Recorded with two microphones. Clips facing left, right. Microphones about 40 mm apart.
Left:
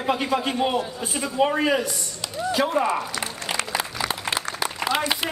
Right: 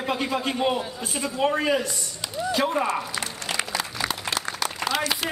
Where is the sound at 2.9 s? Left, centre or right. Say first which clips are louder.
Left 2 dB; centre.